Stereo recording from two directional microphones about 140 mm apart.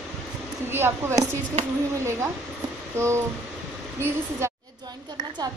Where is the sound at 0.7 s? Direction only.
15° right (ahead or behind).